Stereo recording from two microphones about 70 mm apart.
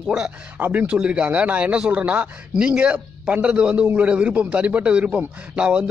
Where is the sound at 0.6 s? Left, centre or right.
Right.